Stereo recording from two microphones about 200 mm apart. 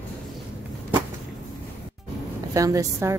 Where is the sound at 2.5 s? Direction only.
15° right (ahead or behind).